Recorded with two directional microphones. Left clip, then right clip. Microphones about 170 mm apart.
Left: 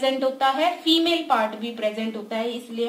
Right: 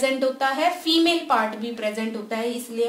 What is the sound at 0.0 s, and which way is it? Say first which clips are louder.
A woman's voice: left 1 dB; 35° right (ahead or behind).